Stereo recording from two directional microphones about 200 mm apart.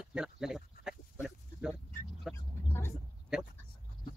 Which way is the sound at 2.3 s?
10° left (ahead or behind).